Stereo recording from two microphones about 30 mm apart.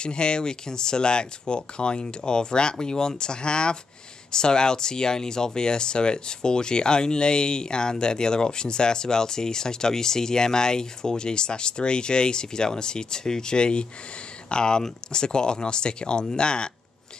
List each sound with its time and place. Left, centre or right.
0.0 s speech: left